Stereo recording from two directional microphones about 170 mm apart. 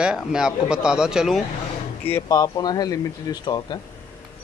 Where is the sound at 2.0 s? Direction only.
15° left (ahead or behind).